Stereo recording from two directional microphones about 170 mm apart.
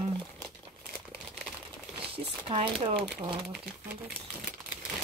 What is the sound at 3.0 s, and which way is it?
Speech, 5° right (ahead or behind).